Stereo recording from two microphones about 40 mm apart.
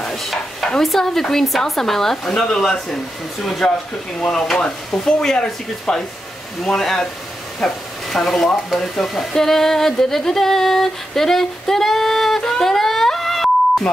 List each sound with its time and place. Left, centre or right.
0.2 s stir: centre
0.7 s speech: centre
9.3 s a sound: centre